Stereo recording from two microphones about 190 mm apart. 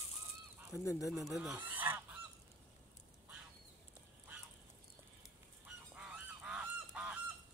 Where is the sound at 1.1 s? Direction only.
Centre (ahead or behind).